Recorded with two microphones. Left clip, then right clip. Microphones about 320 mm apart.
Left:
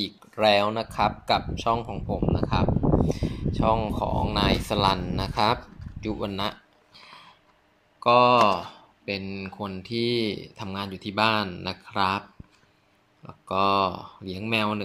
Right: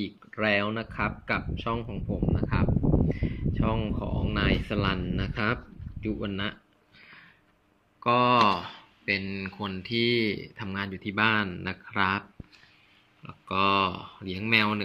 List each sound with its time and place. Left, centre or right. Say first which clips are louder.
0.0 s speech: left 7 dB; centre
2.7 s a sound: left 4 dB; left
3.3 s speech: left 9 dB; centre
6.2 s a sound: left 4 dB; centre
8.0 s speech: left 4 dB; centre
13.3 s speech: left 2 dB; centre